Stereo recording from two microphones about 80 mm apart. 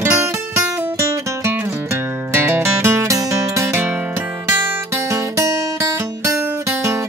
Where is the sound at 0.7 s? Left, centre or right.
Right.